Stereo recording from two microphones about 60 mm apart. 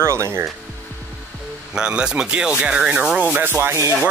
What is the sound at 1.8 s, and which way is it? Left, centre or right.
Speech, centre.